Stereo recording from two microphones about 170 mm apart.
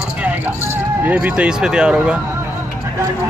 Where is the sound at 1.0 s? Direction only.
10° right (ahead or behind).